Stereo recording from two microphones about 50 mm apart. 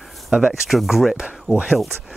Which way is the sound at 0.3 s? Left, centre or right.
Centre.